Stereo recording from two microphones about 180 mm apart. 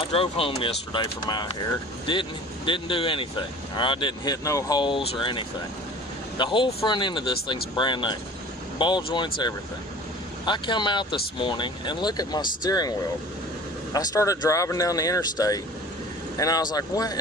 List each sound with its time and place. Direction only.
0.0 s speech: 30° left (ahead or behind)
13.9 s speech: 20° left (ahead or behind)